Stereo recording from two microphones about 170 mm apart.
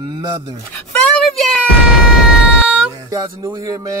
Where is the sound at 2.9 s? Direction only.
20° right (ahead or behind).